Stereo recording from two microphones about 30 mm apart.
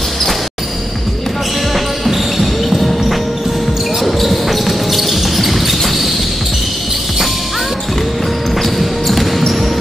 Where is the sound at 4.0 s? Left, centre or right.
Centre.